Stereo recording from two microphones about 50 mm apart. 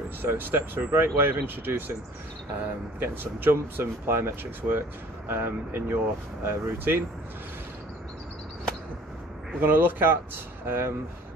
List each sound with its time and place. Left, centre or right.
0.2 s speech: right
3.0 s speech: right
9.6 s speech: right